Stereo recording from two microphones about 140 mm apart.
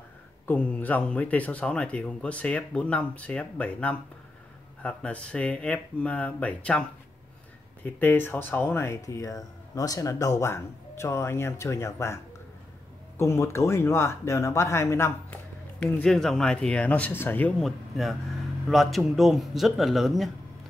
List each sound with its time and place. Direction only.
0.5 s speech: 10° left (ahead or behind)
13.2 s speech: 20° left (ahead or behind)
15.8 s speech: 5° left (ahead or behind)